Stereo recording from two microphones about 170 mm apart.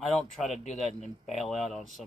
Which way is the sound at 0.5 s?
40° left (ahead or behind).